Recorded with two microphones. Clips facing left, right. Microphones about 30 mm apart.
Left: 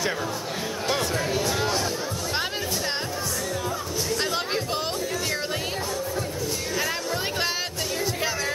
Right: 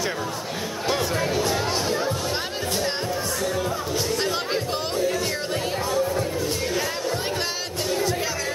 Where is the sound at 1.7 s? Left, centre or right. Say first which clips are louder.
Right 2 dB; centre.